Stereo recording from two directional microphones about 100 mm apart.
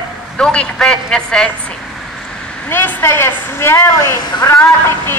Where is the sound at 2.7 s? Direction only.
20° left (ahead or behind).